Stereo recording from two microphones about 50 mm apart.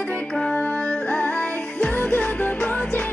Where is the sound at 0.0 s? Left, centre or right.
Left.